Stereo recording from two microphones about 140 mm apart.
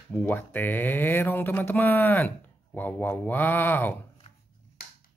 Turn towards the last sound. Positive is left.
turn(degrees=15)  # may be behind; listen again after turning